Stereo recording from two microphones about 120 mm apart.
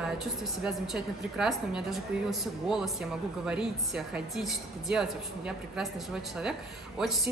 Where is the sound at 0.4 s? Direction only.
5° right (ahead or behind).